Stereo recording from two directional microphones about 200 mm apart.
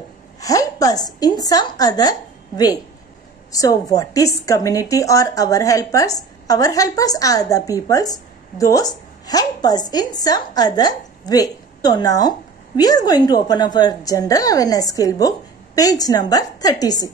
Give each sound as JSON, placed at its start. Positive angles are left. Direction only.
{"t": 0.4, "sound": "a woman's voice", "side_deg": 15}